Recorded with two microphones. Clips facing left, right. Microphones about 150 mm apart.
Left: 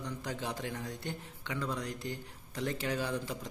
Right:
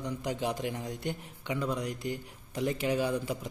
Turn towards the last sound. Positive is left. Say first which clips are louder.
# right 5 dB
turn(degrees=-10)  # may be behind; listen again after turning